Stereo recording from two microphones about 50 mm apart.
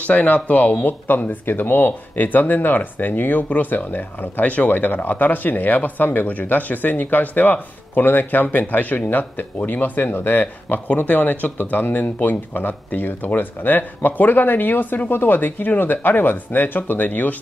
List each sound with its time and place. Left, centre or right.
0.0 s speech: left